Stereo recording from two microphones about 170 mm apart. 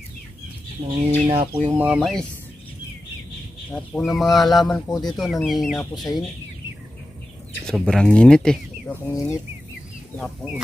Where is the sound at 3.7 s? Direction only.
Centre (ahead or behind).